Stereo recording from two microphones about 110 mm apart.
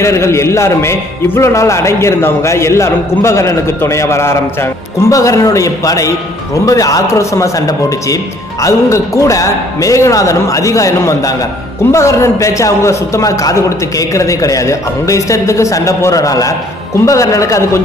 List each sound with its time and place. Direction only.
0.0 s a man's voice: 25° left (ahead or behind)